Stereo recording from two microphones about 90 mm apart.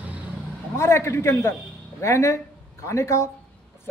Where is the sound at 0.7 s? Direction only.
30° left (ahead or behind).